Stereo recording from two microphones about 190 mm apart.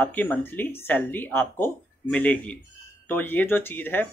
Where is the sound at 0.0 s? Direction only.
10° left (ahead or behind).